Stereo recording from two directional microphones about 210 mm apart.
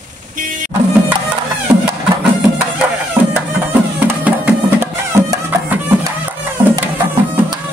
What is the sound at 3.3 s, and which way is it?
Music, 10° right (ahead or behind).